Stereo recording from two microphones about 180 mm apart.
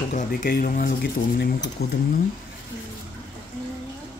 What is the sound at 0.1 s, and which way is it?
Speech, 45° left (ahead or behind).